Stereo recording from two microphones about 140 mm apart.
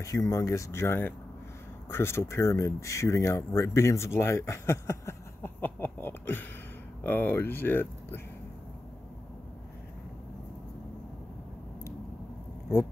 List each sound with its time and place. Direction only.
0.0 s speech: 25° left (ahead or behind)